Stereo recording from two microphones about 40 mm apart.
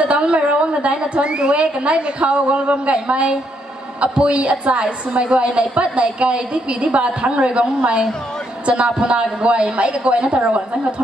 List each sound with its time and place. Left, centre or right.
0.0 s a woman's voice: right
8.6 s a woman's voice: right